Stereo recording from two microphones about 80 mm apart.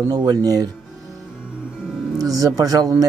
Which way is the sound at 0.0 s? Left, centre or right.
Right.